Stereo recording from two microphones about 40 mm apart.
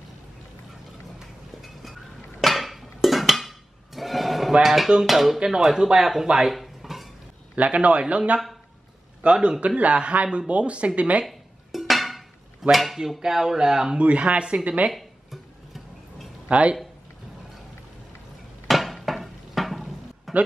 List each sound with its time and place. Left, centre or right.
1.2 s run: centre
2.4 s music: centre
5.0 s dishes: centre
5.4 s speech: centre
6.6 s dishes: centre
7.5 s a man's voice: right
9.2 s a man's voice: right
11.2 s dishes: centre
12.7 s speech: centre
13.9 s a man's voice: right
16.4 s speech: right
18.7 s a sound: centre